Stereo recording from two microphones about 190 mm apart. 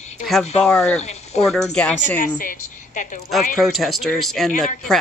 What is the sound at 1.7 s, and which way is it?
Speech, 5° left (ahead or behind).